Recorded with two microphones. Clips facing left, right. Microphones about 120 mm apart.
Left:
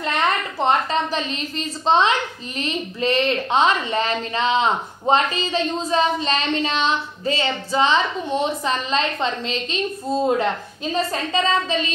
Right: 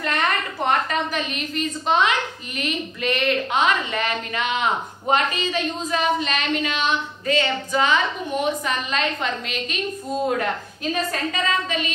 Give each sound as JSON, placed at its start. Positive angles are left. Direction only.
{"t": 0.0, "sound": "a woman's voice", "side_deg": 25}